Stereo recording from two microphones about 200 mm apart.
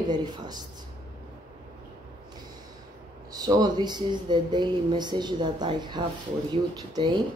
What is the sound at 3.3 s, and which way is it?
Speech, 20° right (ahead or behind).